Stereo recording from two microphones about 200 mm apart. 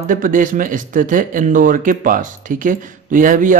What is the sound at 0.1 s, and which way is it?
Speech, 40° right (ahead or behind).